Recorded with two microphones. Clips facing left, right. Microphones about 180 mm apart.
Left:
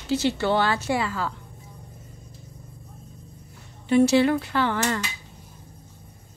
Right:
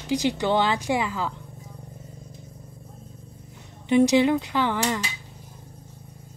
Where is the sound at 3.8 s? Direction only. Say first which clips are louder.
Even; 15° right (ahead or behind).